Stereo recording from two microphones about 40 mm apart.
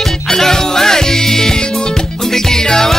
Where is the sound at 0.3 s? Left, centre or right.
Centre.